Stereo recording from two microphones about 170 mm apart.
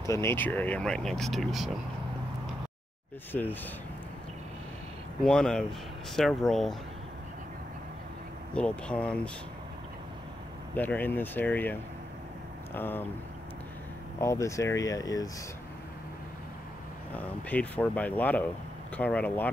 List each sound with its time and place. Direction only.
0.0 s speech: 15° left (ahead or behind); by 1.7 s centre (ahead or behind)
5.2 s speech: 5° left (ahead or behind)
8.5 s speech: 5° left (ahead or behind)
10.7 s speech: 10° left (ahead or behind)
12.7 s speech: 10° left (ahead or behind)
14.2 s speech: 15° left (ahead or behind)
17.1 s speech: 10° left (ahead or behind)